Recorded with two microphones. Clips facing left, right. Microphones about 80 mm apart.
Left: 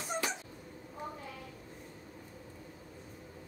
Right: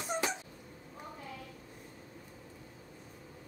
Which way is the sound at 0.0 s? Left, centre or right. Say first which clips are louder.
Right 2 dB; centre.